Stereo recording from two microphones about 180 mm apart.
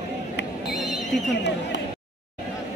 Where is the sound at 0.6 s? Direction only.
Centre (ahead or behind).